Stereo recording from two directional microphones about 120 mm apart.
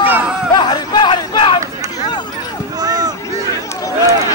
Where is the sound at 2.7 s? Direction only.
35° right (ahead or behind).